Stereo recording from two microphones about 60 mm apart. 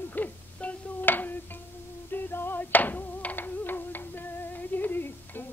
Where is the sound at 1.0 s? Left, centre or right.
Left.